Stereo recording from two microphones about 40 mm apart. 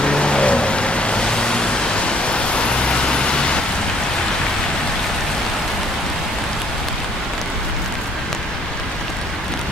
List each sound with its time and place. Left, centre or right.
0.0 s vehicle: left